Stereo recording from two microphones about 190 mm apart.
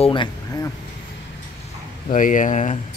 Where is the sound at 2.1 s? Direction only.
45° left (ahead or behind).